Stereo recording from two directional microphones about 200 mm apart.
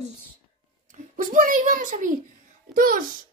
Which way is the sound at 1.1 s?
40° right (ahead or behind).